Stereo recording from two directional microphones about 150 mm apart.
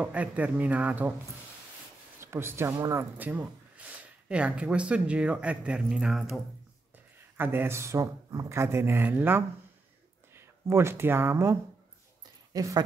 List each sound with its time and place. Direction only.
0.0 s speech: 10° right (ahead or behind)
2.1 s speech: 15° right (ahead or behind); by 6.4 s centre (ahead or behind)
7.3 s speech: 15° right (ahead or behind)
12.5 s speech: 25° right (ahead or behind)